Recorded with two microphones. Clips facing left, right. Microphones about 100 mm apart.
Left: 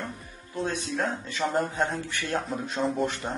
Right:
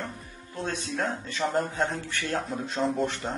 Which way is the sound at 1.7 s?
15° left (ahead or behind).